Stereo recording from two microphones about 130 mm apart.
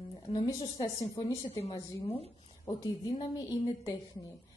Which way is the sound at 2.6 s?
25° left (ahead or behind).